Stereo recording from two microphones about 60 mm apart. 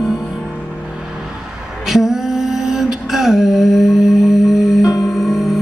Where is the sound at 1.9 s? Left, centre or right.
Centre.